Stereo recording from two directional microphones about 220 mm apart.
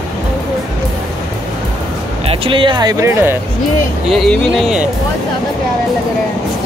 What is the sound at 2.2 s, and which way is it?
Speech, 25° right (ahead or behind).